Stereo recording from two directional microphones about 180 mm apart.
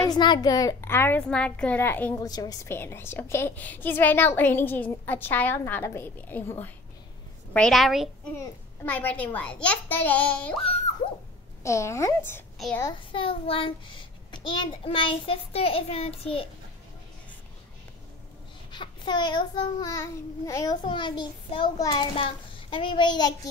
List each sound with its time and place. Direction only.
0.1 s a woman's voice: 25° left (ahead or behind)
2.1 s a woman's voice: 20° left (ahead or behind)
11.6 s a woman's voice: 15° left (ahead or behind)
12.5 s a child's voice: centre (ahead or behind)
13.1 s a child's voice: 30° left (ahead or behind)
18.7 s child singing: 25° left (ahead or behind)